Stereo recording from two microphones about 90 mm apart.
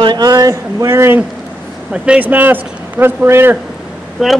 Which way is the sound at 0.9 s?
25° right (ahead or behind).